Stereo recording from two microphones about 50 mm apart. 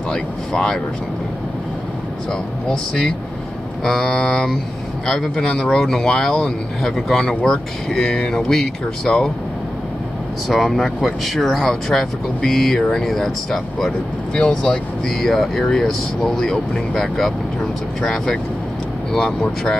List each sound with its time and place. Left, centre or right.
0.1 s speech: centre
2.7 s speech: centre
4.2 s vehicle: centre
5.0 s speech: centre
10.5 s speech: centre
14.3 s speech: centre